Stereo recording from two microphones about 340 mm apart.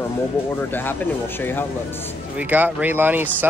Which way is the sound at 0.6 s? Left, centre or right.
Centre.